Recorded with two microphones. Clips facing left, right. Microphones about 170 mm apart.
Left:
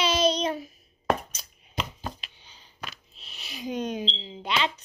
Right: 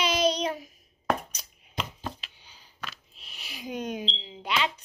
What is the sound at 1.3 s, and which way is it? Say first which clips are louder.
Chopping: left 1 dB; 15° right (ahead or behind).